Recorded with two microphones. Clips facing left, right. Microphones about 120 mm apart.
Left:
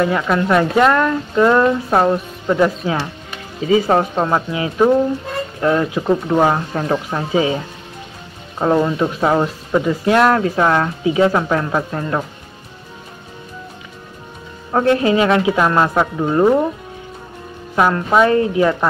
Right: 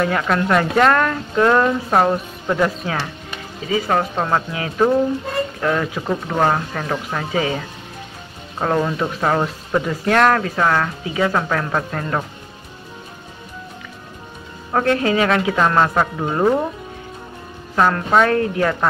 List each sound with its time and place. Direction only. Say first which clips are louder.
0.0 s speech: left 2 dB; 5° left (ahead or behind)
3.6 s speech: left 5 dB; 30° left (ahead or behind)
4.0 s speech: left 2 dB; 15° left (ahead or behind)
10.4 s speech: left 3 dB; 20° left (ahead or behind)
14.7 s speech: left 3 dB; 15° left (ahead or behind)
17.7 s speech: left 2 dB; 10° left (ahead or behind)